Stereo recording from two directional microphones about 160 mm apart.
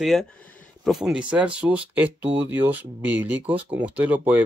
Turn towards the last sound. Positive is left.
turn(degrees=-10)  # may be behind; listen again after turning